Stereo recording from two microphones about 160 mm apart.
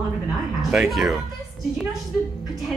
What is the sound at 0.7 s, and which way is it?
Speech, centre (ahead or behind).